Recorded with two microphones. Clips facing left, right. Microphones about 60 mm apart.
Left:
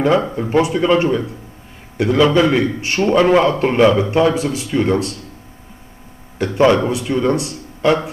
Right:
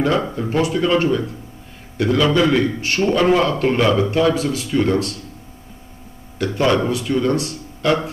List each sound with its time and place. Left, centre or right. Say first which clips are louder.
0.0 s a man's voice: left 3 dB; left
6.3 s a man's voice: left 4 dB; left